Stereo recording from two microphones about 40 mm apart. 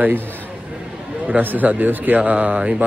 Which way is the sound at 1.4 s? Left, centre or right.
Right.